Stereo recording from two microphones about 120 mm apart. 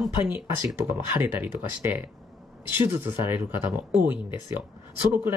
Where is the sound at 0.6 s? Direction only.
25° right (ahead or behind).